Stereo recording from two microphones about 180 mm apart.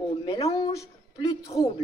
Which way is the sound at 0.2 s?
20° left (ahead or behind).